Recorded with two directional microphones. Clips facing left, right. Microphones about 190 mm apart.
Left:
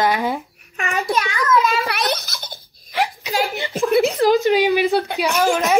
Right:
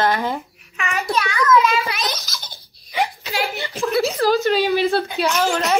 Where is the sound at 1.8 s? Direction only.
60° left (ahead or behind).